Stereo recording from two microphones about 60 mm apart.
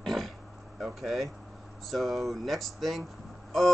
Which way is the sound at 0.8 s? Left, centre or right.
Centre.